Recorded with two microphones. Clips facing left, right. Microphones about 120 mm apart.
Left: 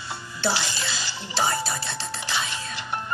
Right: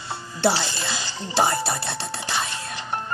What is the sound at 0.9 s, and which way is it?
Speech, 55° right (ahead or behind).